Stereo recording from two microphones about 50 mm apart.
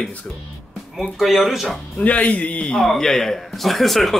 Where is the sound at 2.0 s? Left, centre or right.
Left.